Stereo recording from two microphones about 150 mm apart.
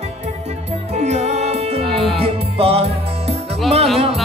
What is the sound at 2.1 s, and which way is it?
Music, 40° right (ahead or behind).